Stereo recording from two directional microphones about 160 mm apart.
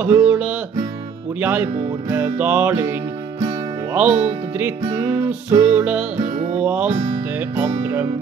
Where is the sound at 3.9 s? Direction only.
10° right (ahead or behind).